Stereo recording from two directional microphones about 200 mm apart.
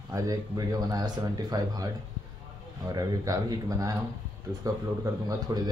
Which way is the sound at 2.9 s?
20° right (ahead or behind).